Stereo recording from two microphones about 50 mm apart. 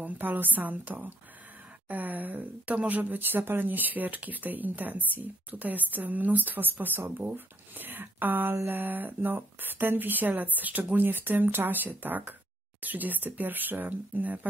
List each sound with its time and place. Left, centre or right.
0.0 s speech: right